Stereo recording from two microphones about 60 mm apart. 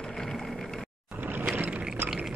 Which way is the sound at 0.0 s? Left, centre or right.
Centre.